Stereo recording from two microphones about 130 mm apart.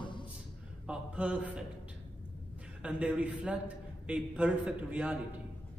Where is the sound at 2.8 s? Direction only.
10° right (ahead or behind).